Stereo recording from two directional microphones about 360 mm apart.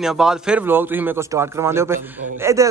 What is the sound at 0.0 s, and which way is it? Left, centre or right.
A man's voice, centre.